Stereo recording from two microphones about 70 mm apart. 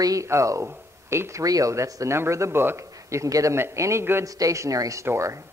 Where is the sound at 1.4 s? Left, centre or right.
Right.